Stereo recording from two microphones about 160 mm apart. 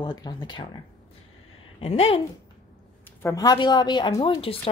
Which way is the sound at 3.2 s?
20° left (ahead or behind).